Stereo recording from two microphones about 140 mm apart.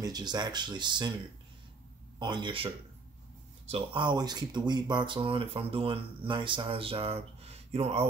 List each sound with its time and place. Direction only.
0.0 s speech: 30° right (ahead or behind)
2.1 s speech: 35° right (ahead or behind); by 8.1 s 50° right (ahead or behind)